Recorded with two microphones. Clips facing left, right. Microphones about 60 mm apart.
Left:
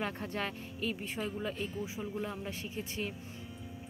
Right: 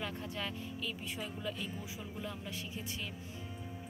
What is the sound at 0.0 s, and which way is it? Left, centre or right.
Speech, left.